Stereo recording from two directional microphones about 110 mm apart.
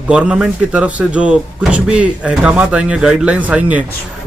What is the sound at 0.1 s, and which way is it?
A man's voice, 10° right (ahead or behind).